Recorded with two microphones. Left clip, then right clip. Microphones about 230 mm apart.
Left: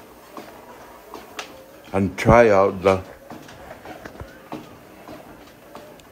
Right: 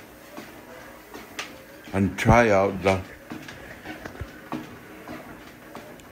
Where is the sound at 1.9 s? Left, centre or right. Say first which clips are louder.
Left 5 dB; left.